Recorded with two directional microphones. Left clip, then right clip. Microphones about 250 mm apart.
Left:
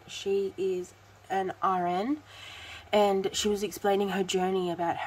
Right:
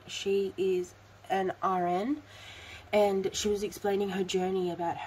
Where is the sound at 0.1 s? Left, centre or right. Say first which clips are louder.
Even; centre.